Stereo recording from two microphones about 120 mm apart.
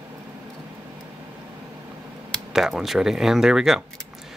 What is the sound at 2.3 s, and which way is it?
Speech, 5° right (ahead or behind).